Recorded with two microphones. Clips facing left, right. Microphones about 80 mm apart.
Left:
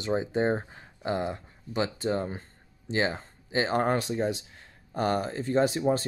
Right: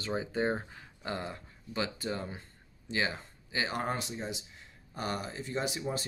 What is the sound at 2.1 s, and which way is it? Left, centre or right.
Speech, left.